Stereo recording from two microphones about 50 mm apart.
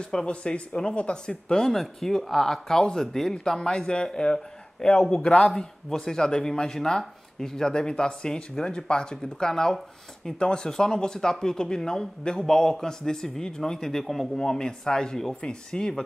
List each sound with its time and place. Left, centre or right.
0.0 s speech: centre
1.7 s speech: centre